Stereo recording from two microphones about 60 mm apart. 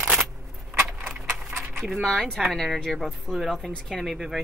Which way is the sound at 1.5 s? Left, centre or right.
Right.